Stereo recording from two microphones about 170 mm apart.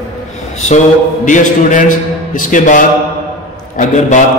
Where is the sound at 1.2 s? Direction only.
50° left (ahead or behind).